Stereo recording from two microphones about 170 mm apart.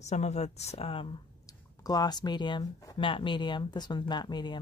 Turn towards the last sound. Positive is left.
turn(degrees=25)  # may be behind; listen again after turning